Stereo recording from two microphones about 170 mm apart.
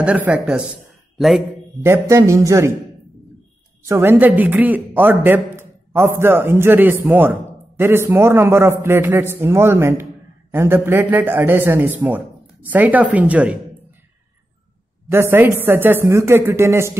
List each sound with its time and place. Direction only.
0.0 s a man's voice: 5° right (ahead or behind)
1.9 s a woman's voice: 15° right (ahead or behind)
3.8 s a woman's voice: 15° right (ahead or behind)
15.0 s a woman's voice: 15° right (ahead or behind)